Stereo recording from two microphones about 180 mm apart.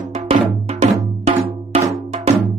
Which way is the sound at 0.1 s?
35° right (ahead or behind).